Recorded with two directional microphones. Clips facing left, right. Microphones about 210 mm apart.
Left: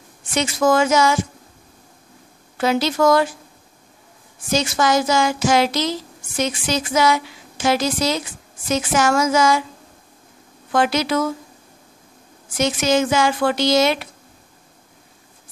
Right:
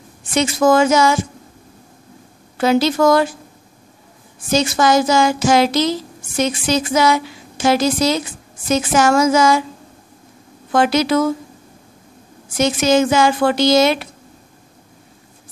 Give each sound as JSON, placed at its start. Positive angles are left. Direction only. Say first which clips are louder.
{"t": 0.3, "sound": "a woman's voice", "louder": "right 4 dB", "side_deg": -35}
{"t": 2.6, "sound": "a woman's voice", "louder": "right 3 dB", "side_deg": -35}
{"t": 4.5, "sound": "a woman's voice", "louder": "right 4 dB", "side_deg": -35}
{"t": 10.7, "sound": "a woman's voice", "louder": "right 4 dB", "side_deg": -35}
{"t": 12.5, "sound": "a woman's voice", "louder": "right 4 dB", "side_deg": -35}